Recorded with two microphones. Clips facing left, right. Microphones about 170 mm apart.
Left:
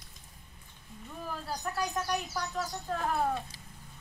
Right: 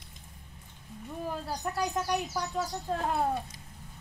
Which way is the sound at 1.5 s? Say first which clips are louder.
Even; 15° right (ahead or behind).